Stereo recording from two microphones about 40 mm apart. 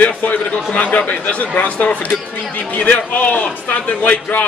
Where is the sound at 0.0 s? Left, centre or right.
Left.